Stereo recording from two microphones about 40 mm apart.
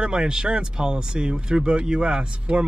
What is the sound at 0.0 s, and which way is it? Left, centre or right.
Speech, right.